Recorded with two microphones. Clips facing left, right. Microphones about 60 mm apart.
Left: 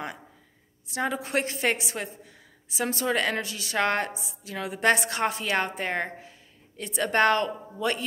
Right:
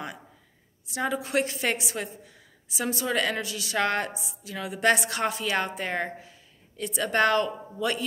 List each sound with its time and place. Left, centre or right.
0.8 s a woman's voice: left